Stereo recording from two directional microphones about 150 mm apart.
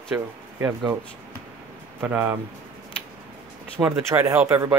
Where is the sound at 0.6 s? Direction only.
20° right (ahead or behind).